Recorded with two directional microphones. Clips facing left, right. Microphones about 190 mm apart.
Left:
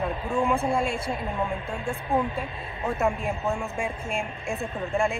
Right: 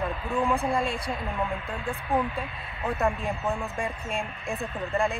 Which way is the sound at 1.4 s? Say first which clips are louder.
Left 2 dB; 15° left (ahead or behind).